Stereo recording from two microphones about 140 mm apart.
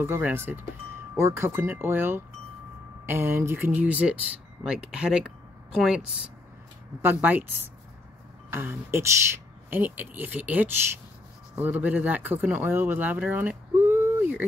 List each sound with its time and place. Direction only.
0.0 s speech: 15° right (ahead or behind)
8.5 s speech: 15° right (ahead or behind)